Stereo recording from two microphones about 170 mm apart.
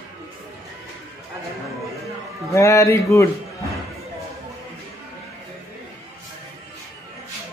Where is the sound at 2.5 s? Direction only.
15° left (ahead or behind).